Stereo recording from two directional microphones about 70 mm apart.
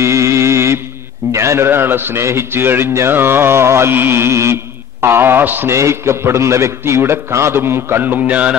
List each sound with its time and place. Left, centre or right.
0.0 s music: right
1.3 s a man's voice: right
5.7 s a man's voice: right